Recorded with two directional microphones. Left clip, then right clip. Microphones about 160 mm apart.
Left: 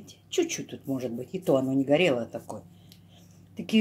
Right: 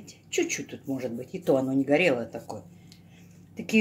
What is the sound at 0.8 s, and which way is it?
Speech, 25° left (ahead or behind).